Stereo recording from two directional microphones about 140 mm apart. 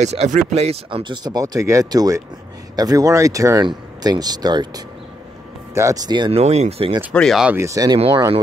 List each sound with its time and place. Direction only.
0.0 s speech: 55° right (ahead or behind)
0.8 s speech: 35° right (ahead or behind)
6.1 s speech: 35° right (ahead or behind)
6.4 s speech: 50° right (ahead or behind)
7.2 s speech: centre (ahead or behind)
7.4 s speech: 20° right (ahead or behind)